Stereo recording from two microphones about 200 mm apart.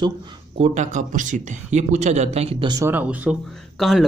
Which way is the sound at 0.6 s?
35° right (ahead or behind).